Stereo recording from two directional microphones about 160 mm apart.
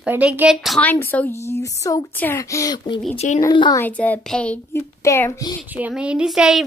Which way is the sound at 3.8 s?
10° left (ahead or behind).